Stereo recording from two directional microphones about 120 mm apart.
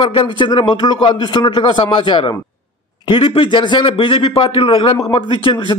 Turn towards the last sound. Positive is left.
turn(degrees=45)  # may be behind; listen again after turning